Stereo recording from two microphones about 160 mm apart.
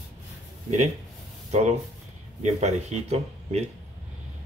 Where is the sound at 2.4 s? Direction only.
45° right (ahead or behind).